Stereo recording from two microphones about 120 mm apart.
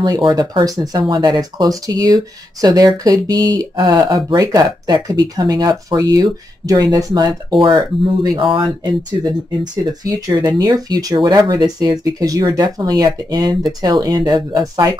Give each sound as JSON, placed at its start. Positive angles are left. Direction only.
{"t": 0.2, "sound": "speech", "side_deg": -40}
{"t": 9.6, "sound": "speech", "side_deg": -30}